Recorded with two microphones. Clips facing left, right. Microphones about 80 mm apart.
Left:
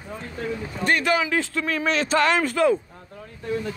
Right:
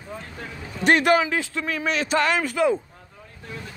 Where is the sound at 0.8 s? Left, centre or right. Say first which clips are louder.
Right 4 dB; right.